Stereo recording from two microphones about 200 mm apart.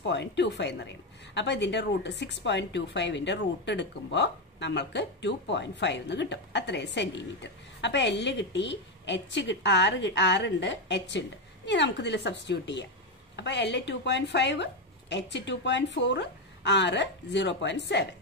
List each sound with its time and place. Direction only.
0.0 s a woman's voice: 60° left (ahead or behind)